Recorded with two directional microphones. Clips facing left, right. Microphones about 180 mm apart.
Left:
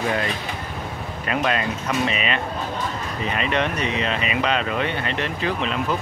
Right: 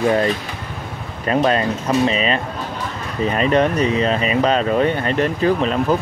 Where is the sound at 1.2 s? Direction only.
35° right (ahead or behind).